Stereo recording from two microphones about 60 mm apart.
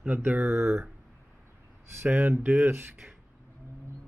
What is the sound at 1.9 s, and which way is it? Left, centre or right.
Speech, right.